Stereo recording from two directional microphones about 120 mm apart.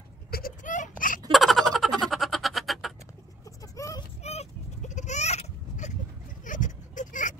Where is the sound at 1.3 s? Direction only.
Centre (ahead or behind).